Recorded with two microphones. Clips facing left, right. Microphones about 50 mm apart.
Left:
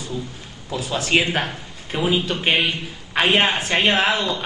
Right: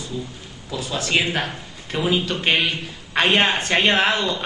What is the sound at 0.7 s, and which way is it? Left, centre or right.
A man's voice, left.